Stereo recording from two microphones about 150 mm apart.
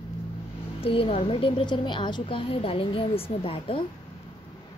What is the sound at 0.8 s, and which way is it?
Speech, 40° left (ahead or behind).